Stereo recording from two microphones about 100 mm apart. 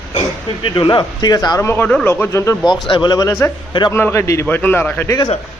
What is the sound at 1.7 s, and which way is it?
Speech, 20° left (ahead or behind).